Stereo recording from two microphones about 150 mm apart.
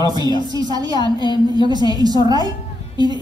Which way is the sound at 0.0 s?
25° right (ahead or behind).